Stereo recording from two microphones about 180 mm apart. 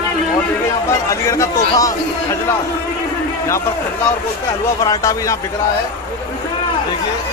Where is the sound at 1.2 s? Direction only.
15° left (ahead or behind).